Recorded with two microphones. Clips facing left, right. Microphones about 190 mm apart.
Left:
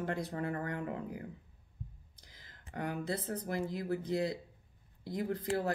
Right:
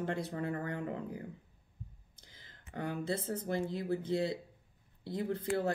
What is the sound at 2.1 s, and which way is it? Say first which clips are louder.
Clicking: right 3 dB; 30° right (ahead or behind).